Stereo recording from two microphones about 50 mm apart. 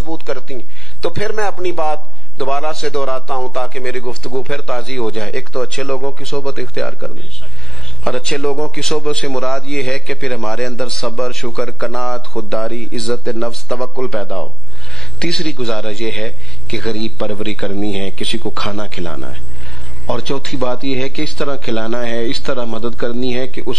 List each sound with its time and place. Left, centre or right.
0.0 s a man's voice: centre
3.7 s a man's voice: centre
9.3 s a man's voice: centre